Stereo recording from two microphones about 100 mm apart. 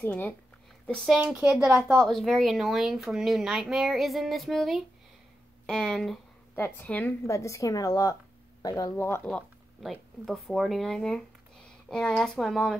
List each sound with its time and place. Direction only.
0.0 s a woman's voice: 20° left (ahead or behind)
1.2 s speech: 10° right (ahead or behind)
6.5 s a woman's voice: 20° left (ahead or behind)
7.2 s a woman's voice: 30° left (ahead or behind)
8.9 s a woman's voice: 25° left (ahead or behind)
9.8 s a woman's voice: centre (ahead or behind)